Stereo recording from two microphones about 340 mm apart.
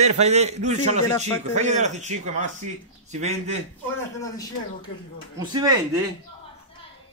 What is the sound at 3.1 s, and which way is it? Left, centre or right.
Speech, centre.